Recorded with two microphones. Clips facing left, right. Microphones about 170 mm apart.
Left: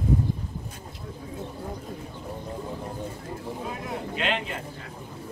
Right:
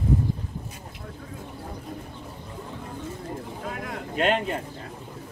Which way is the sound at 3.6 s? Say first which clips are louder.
Left 1 dB; 20° left (ahead or behind).